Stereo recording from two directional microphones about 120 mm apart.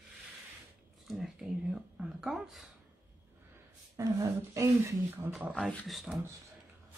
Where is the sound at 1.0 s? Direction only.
Centre (ahead or behind).